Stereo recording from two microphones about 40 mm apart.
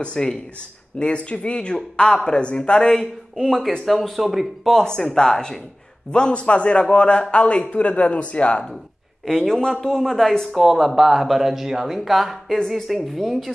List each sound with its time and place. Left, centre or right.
0.0 s a man's voice: centre
4.2 s speech: centre
4.8 s a man's voice: centre
9.2 s a man's voice: centre